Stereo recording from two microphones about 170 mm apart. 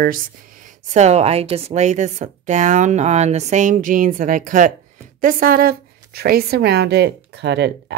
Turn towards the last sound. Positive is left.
turn(degrees=-85)